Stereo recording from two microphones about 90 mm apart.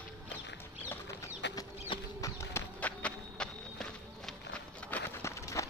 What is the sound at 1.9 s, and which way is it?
Clip-clop, 75° left (ahead or behind).